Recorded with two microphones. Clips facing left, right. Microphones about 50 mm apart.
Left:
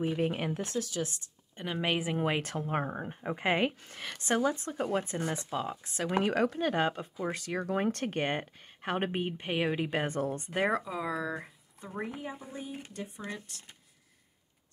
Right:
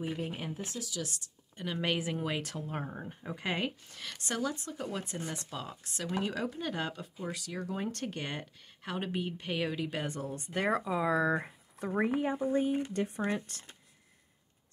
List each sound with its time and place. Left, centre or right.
0.1 s speech: left
1.6 s speech: centre
2.1 s speech: left
6.1 s speech: left
10.7 s speech: centre
11.1 s speech: right
11.8 s speech: right
12.2 s speech: right
13.2 s speech: right